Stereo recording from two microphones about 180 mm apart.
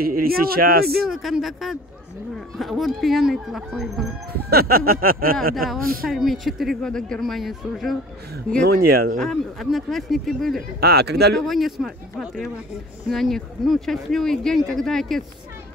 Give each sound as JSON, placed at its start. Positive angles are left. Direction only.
{"t": 0.0, "sound": "speech", "side_deg": -55}
{"t": 1.0, "sound": "speech", "side_deg": 0}
{"t": 4.3, "sound": "speech", "side_deg": -60}
{"t": 6.0, "sound": "speech", "side_deg": 0}
{"t": 8.6, "sound": "speech", "side_deg": -60}
{"t": 9.2, "sound": "speech", "side_deg": 0}
{"t": 10.8, "sound": "speech", "side_deg": -60}
{"t": 11.4, "sound": "speech", "side_deg": 0}